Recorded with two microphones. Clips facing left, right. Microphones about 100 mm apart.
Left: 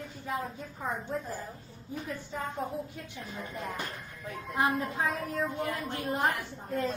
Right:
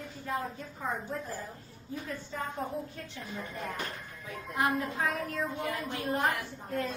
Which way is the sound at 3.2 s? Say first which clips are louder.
Even; centre (ahead or behind).